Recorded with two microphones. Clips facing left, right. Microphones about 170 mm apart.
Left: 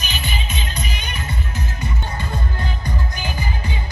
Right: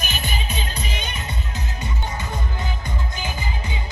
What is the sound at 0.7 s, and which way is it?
Music, 30° right (ahead or behind).